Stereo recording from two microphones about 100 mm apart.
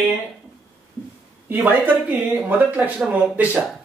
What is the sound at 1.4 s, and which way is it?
A woman's voice, 20° right (ahead or behind).